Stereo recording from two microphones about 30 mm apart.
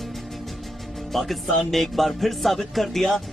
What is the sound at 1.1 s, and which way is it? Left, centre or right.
Speech, centre.